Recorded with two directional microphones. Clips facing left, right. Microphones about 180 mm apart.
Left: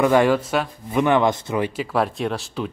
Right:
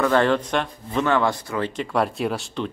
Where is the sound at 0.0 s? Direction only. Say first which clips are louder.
Left 3 dB; 10° left (ahead or behind).